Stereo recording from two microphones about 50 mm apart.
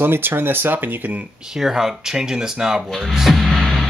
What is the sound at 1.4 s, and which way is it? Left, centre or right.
Speech, centre.